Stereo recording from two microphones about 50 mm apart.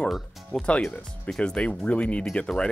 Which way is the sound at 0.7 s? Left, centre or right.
Left.